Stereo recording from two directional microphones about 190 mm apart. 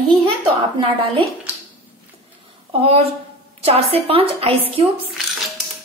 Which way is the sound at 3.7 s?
30° right (ahead or behind).